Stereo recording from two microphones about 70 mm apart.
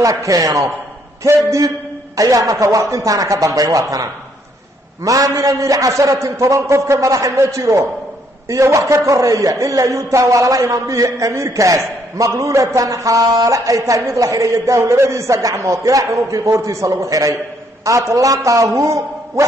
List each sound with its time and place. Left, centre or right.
0.0 s a man's voice: right